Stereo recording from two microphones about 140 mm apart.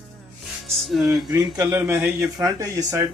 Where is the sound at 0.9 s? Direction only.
Centre (ahead or behind).